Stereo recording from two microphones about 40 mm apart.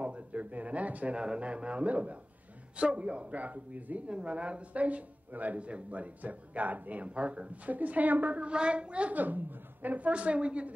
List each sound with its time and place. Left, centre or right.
0.0 s speech: right
1.1 s speech: right
4.1 s speech: right
8.5 s speech: right
9.1 s speech: right